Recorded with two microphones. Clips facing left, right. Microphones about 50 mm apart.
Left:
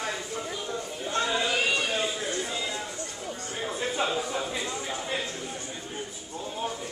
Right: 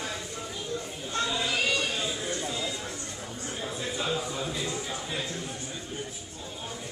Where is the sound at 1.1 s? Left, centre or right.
Left.